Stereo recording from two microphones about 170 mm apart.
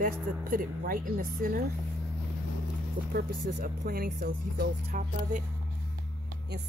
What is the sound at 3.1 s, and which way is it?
Speech, 65° right (ahead or behind).